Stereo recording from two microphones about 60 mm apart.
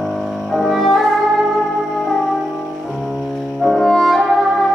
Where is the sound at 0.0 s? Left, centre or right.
Centre.